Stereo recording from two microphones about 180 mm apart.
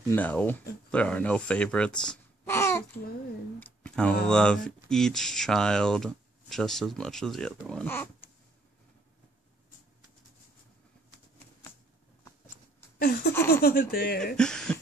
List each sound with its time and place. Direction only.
0.1 s speech: 10° left (ahead or behind)
2.5 s babbling: 15° left (ahead or behind)
3.5 s speech: 10° left (ahead or behind)
13.0 s speech: 60° left (ahead or behind)
14.3 s speech: 5° left (ahead or behind)